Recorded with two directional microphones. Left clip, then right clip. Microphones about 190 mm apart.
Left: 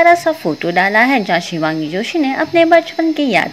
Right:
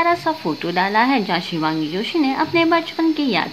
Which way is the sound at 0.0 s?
25° left (ahead or behind).